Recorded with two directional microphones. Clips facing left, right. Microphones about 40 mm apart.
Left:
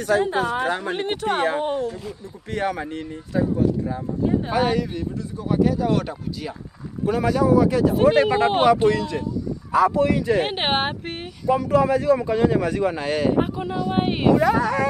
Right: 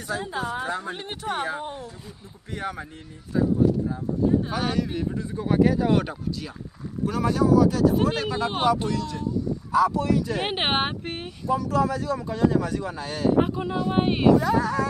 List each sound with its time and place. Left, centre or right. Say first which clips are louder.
0.0 s speech: left 9 dB; left
4.5 s speech: left 6 dB; left
5.7 s speech: even; centre
7.4 s speech: even; left
8.8 s speech: left 8 dB; left
9.7 s speech: left 4 dB; left
10.4 s speech: left 2 dB; centre
11.6 s speech: left 9 dB; left
13.4 s speech: even; centre
14.3 s speech: left 3 dB; left